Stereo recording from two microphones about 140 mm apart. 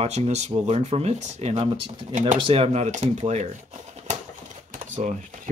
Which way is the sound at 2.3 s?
40° right (ahead or behind).